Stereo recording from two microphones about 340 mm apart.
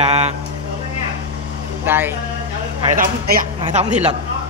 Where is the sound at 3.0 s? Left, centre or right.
Right.